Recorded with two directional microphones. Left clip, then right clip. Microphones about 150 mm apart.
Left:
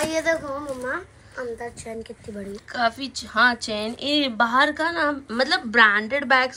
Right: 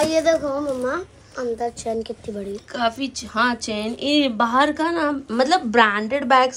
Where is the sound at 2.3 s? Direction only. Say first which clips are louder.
Left 1 dB; 15° right (ahead or behind).